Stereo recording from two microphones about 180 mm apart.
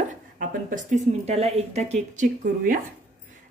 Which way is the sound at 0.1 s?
50° right (ahead or behind).